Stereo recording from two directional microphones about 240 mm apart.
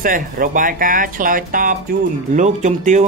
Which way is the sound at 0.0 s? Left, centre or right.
Right.